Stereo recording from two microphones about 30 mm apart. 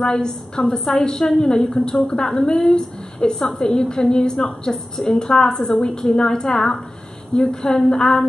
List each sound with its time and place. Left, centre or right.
0.7 s a woman's voice: centre
3.2 s a woman's voice: centre